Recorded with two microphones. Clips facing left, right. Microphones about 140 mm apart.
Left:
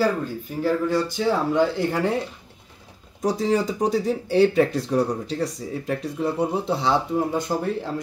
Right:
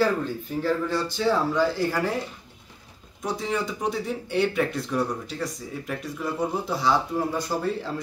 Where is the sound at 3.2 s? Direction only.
35° left (ahead or behind); by 7.8 s 20° left (ahead or behind).